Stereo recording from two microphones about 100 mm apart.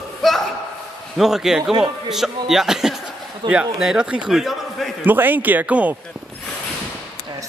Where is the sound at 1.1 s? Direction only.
5° right (ahead or behind).